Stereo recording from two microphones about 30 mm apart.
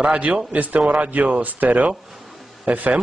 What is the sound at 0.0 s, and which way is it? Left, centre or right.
Speech, right.